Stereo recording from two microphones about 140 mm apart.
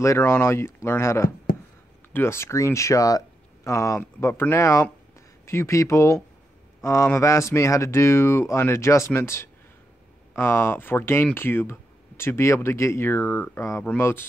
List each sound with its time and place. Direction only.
0.0 s speech: 20° left (ahead or behind)